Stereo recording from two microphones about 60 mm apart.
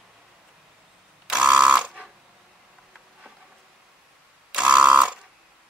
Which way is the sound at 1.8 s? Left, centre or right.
Centre.